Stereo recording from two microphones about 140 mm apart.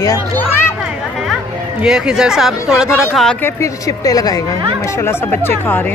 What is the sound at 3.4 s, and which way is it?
Speech, 20° left (ahead or behind).